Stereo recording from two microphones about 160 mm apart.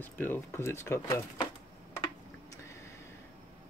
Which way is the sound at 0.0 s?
10° left (ahead or behind).